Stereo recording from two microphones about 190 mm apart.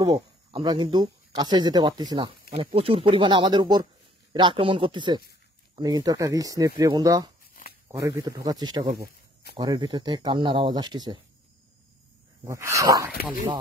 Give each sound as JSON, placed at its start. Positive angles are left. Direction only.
{"t": 0.0, "sound": "speech", "side_deg": -25}
{"t": 12.4, "sound": "speech", "side_deg": -15}
{"t": 13.1, "sound": "speech", "side_deg": 50}